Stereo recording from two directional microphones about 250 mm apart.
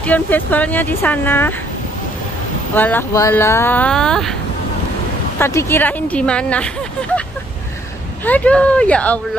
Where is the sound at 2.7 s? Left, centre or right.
Centre.